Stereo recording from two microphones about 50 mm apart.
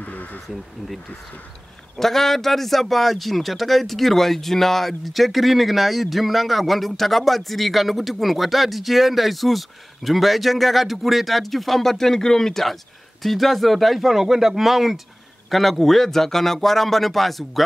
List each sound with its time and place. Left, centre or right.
0.0 s insect: left
2.0 s a man's voice: centre